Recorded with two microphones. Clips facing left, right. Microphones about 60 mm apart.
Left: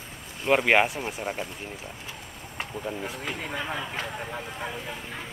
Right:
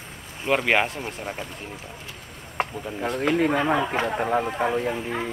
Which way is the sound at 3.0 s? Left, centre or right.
Right.